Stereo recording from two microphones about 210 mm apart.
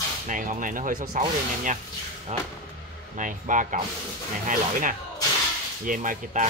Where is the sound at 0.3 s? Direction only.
40° right (ahead or behind).